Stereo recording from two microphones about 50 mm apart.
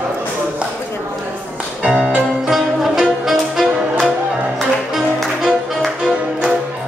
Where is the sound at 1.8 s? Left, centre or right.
Right.